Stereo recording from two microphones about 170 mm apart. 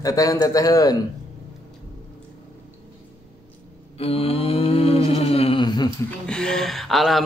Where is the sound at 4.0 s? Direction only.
35° left (ahead or behind).